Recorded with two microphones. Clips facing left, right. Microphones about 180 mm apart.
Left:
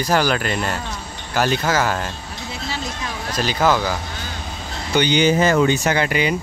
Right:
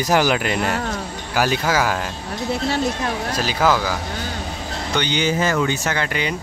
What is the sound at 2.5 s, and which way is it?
Speech, 60° right (ahead or behind).